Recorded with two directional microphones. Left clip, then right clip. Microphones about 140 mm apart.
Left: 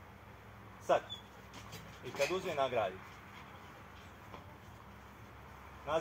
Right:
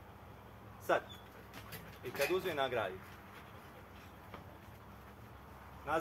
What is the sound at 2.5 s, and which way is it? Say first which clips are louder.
Speech: left 2 dB; 40° right (ahead or behind).